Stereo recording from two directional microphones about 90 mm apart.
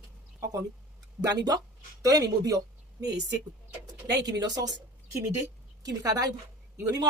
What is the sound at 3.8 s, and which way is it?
Speech, 45° right (ahead or behind).